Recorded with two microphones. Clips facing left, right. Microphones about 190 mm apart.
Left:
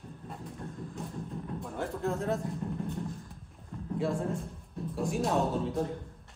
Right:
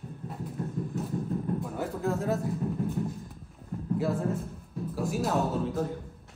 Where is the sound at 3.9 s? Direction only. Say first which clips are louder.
Right 2 dB; 5° right (ahead or behind).